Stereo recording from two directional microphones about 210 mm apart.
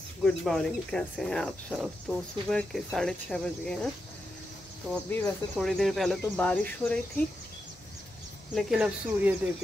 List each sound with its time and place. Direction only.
0.2 s speech: centre (ahead or behind)
5.1 s speech: 5° left (ahead or behind)
8.5 s speech: centre (ahead or behind)